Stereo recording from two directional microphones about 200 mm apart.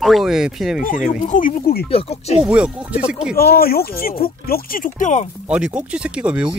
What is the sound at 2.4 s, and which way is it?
Speech, 5° right (ahead or behind).